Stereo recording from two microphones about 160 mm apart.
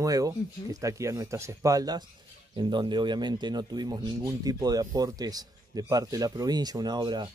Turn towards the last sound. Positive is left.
turn(degrees=-25)  # may be behind; listen again after turning